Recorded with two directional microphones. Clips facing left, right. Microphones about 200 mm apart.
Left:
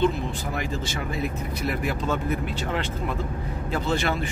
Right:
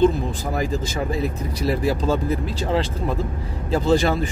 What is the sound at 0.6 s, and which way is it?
Speech, 35° right (ahead or behind).